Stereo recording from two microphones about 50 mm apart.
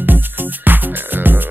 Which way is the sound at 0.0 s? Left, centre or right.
Right.